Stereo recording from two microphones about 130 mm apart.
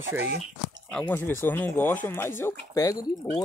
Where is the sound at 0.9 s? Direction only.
15° left (ahead or behind).